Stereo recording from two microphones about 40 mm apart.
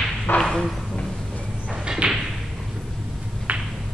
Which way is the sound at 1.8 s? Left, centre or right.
Centre.